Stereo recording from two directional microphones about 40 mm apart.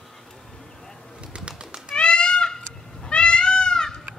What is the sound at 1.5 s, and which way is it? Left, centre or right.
Bird, right.